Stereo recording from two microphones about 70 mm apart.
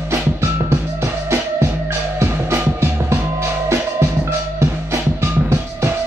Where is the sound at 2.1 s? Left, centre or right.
Right.